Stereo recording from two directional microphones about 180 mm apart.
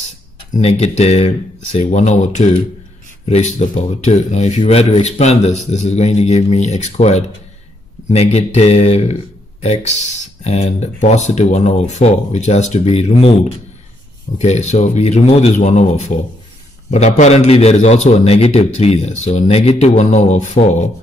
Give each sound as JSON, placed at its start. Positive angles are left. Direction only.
{"t": 0.5, "sound": "speech", "side_deg": 35}